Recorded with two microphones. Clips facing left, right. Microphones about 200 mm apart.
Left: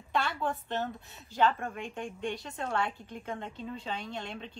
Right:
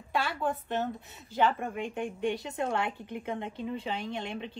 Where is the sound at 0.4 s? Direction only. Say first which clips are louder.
Right 2 dB; 15° right (ahead or behind).